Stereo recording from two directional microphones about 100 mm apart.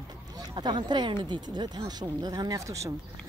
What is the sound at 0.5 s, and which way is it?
Speech, 45° right (ahead or behind).